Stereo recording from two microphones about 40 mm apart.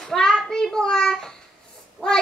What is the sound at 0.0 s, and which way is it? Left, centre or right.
Child singing, centre.